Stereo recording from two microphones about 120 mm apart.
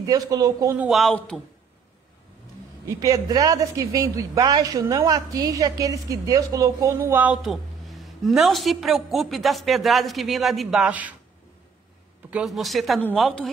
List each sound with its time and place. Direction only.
0.0 s a man's voice: 30° right (ahead or behind)
0.8 s a woman's voice: centre (ahead or behind)
2.9 s a woman's voice: 25° right (ahead or behind)
7.4 s a woman's voice: centre (ahead or behind)
12.3 s a woman's voice: 5° right (ahead or behind)